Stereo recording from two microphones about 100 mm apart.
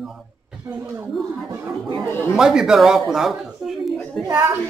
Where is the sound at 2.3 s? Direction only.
5° right (ahead or behind).